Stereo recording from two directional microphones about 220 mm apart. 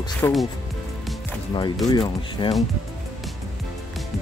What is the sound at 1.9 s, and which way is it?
Speech, 20° left (ahead or behind).